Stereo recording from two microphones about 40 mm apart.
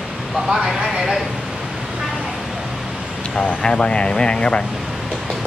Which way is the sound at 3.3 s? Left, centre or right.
Centre.